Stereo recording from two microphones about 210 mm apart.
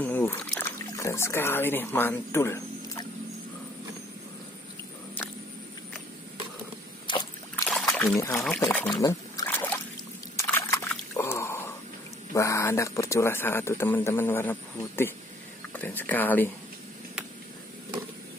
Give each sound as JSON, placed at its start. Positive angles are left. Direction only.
{"t": 0.0, "sound": "speech", "side_deg": 10}
{"t": 7.1, "sound": "a sound", "side_deg": 20}
{"t": 7.9, "sound": "pour", "side_deg": 5}
{"t": 8.5, "sound": "speech", "side_deg": 10}
{"t": 10.3, "sound": "a sound", "side_deg": 10}
{"t": 12.4, "sound": "speech", "side_deg": 15}